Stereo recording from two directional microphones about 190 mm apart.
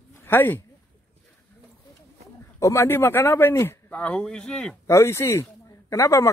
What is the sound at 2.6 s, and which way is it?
Speech, 15° left (ahead or behind).